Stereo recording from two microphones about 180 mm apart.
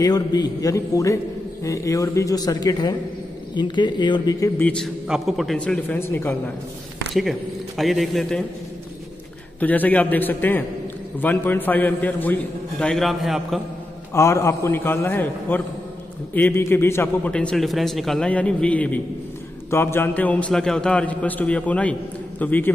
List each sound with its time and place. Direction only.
0.0 s speech: 25° left (ahead or behind)
4.6 s a man's voice: centre (ahead or behind)
7.2 s a man's voice: centre (ahead or behind)
9.6 s a man's voice: 10° left (ahead or behind)
14.1 s a man's voice: 15° left (ahead or behind)